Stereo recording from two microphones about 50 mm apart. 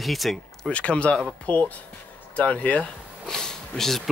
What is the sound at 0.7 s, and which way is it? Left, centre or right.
Speech, left.